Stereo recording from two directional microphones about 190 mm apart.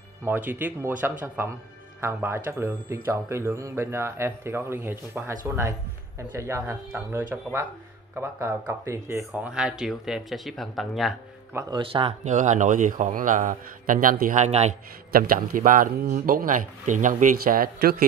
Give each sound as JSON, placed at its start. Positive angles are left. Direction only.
{"t": 0.2, "sound": "a man's voice", "side_deg": -10}
{"t": 5.6, "sound": "a sound", "side_deg": -15}
{"t": 6.3, "sound": "a man's voice", "side_deg": -15}
{"t": 11.5, "sound": "speech", "side_deg": -25}
{"t": 15.1, "sound": "speech", "side_deg": -50}